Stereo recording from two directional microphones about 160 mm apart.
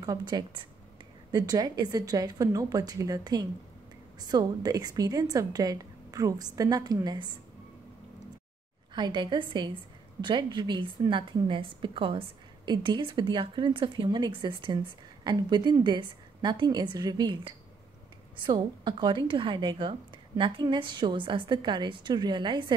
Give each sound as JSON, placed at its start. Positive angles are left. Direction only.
{"t": 0.0, "sound": "a woman's voice", "side_deg": -25}
{"t": 8.9, "sound": "a woman's voice", "side_deg": -30}